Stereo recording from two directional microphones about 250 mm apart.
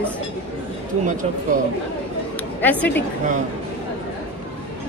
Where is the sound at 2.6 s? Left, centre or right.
Centre.